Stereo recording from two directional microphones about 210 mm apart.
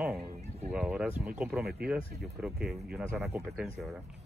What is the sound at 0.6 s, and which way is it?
Speech, 5° right (ahead or behind).